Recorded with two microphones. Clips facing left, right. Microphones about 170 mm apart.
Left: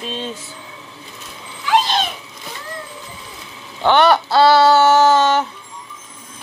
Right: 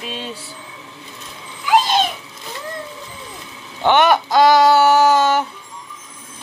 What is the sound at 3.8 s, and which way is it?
Speech, 15° right (ahead or behind).